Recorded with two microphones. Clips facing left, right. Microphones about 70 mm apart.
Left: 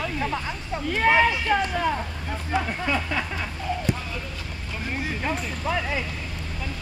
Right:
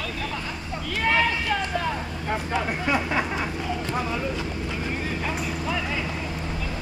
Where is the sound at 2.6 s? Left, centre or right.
Centre.